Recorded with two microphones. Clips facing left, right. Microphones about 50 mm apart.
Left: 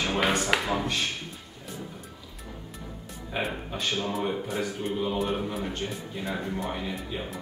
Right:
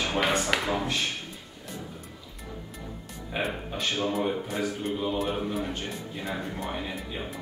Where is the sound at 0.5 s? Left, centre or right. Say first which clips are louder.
Left 1 dB; centre.